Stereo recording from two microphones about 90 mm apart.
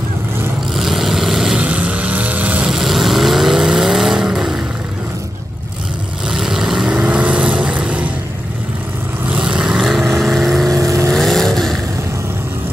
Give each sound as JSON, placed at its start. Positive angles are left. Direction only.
{"t": 0.7, "sound": "vehicle", "side_deg": -5}
{"t": 2.7, "sound": "vehicle", "side_deg": -5}
{"t": 6.3, "sound": "vehicle", "side_deg": -5}
{"t": 9.3, "sound": "vehicle", "side_deg": -10}
{"t": 10.7, "sound": "vehicle", "side_deg": -35}
{"t": 11.1, "sound": "vehicle", "side_deg": 5}